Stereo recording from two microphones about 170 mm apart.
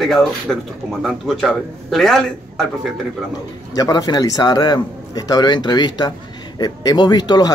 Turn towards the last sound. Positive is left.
turn(degrees=25)  # may be behind; listen again after turning